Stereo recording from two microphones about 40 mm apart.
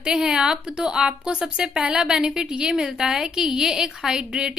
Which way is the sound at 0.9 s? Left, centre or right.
Right.